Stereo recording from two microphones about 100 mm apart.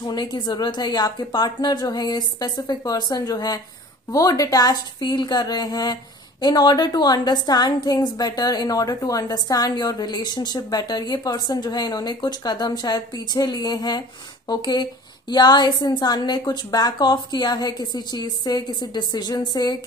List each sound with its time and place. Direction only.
0.0 s a woman's voice: 45° left (ahead or behind)